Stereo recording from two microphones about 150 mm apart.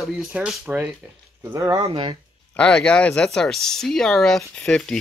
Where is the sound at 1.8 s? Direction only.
40° right (ahead or behind).